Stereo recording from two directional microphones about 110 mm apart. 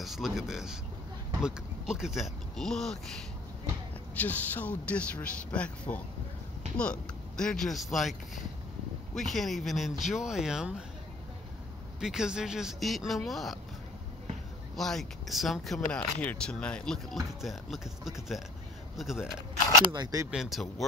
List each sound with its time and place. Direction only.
0.0 s speech: centre (ahead or behind)
4.1 s speech: 15° left (ahead or behind); by 10.7 s 5° right (ahead or behind)
12.0 s speech: 5° right (ahead or behind)
14.8 s speech: 5° left (ahead or behind)
19.9 s speech: 35° right (ahead or behind)
20.2 s speech: 5° right (ahead or behind)